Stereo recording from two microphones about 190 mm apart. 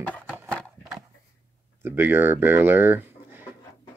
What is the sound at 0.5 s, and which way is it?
Horse, centre (ahead or behind).